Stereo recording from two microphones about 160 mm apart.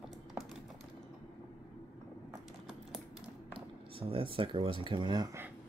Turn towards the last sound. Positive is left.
turn(degrees=-25)  # may be behind; listen again after turning